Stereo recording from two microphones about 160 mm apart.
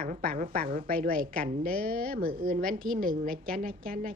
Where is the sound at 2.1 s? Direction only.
65° right (ahead or behind).